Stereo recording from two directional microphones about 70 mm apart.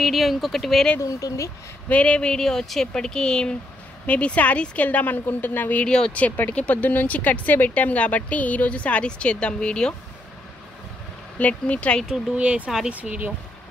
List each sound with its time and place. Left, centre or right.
0.0 s speech: centre
1.0 s speech: left
1.9 s speech: centre
5.9 s speech: centre
6.1 s speech: left
11.3 s speech: centre
12.4 s speech: centre